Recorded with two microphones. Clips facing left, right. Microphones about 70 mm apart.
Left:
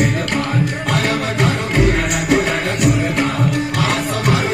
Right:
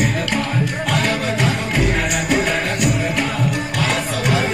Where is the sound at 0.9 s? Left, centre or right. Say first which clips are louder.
Left 1 dB; left.